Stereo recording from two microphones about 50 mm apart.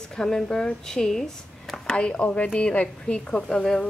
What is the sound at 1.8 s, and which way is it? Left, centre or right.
A woman's voice, left.